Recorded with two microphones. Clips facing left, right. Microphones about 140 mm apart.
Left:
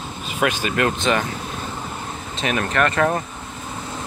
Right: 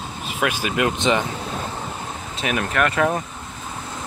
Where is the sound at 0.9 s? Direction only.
20° right (ahead or behind).